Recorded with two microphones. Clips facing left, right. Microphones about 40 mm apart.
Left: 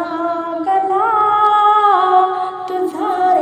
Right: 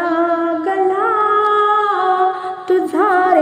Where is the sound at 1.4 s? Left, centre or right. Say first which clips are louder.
Left 2 dB; centre.